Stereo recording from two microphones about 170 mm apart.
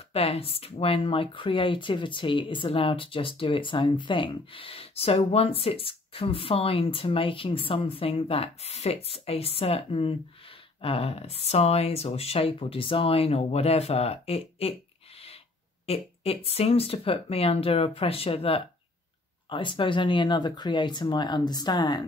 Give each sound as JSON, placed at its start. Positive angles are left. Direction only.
{"t": 0.1, "sound": "speech", "side_deg": 35}
{"t": 15.9, "sound": "speech", "side_deg": 35}